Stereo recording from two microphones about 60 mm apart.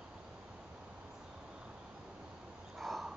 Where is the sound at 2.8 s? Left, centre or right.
Centre.